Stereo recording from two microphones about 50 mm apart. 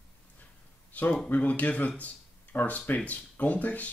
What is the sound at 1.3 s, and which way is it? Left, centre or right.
Speech, left.